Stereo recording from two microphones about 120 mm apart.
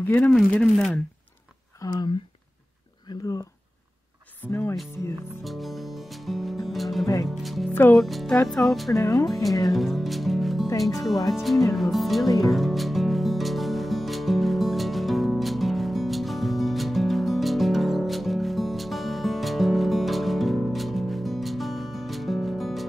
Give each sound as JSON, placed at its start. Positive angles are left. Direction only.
{"t": 0.0, "sound": "speech", "side_deg": 15}
{"t": 0.3, "sound": "speech", "side_deg": 5}
{"t": 1.8, "sound": "speech", "side_deg": 30}
{"t": 3.1, "sound": "speech", "side_deg": 30}
{"t": 4.5, "sound": "speech", "side_deg": 20}
{"t": 5.4, "sound": "music", "side_deg": 0}
{"t": 7.2, "sound": "speech", "side_deg": 0}
{"t": 7.7, "sound": "speech", "side_deg": 15}
{"t": 8.0, "sound": "speech", "side_deg": 0}
{"t": 8.9, "sound": "speech", "side_deg": 30}
{"t": 9.7, "sound": "speech", "side_deg": 0}
{"t": 12.4, "sound": "music", "side_deg": 0}